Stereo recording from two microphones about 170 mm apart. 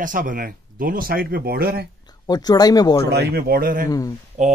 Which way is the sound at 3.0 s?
75° right (ahead or behind).